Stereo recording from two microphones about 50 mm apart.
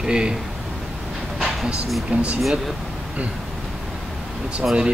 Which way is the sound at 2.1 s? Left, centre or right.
Right.